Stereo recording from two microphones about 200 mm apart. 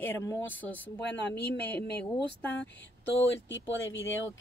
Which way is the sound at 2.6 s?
60° left (ahead or behind).